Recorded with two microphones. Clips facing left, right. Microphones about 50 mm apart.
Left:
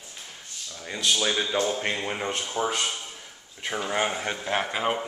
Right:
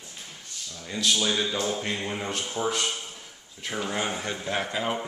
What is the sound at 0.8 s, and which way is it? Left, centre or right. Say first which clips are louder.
Speech: even; centre.